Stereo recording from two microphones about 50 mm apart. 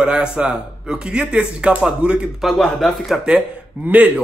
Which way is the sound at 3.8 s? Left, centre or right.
Right.